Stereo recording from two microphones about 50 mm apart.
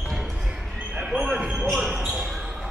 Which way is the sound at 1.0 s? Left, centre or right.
Centre.